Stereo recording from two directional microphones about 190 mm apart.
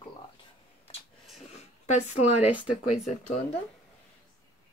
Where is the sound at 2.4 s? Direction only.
5° right (ahead or behind).